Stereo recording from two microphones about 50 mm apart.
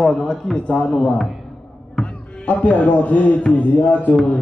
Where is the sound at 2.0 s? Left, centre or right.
Centre.